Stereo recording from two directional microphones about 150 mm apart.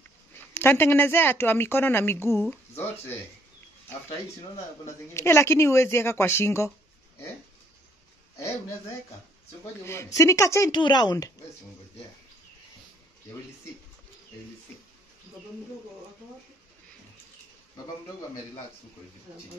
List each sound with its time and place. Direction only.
0.6 s a woman's voice: 15° left (ahead or behind)
5.1 s a woman's voice: 15° left (ahead or behind)
10.1 s speech: 20° left (ahead or behind)
10.7 s speech: 30° left (ahead or behind)